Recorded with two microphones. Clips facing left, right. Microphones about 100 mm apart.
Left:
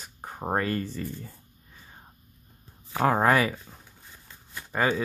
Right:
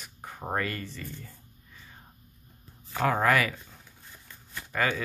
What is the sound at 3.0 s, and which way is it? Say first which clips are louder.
Speech: left 3 dB; 30° left (ahead or behind).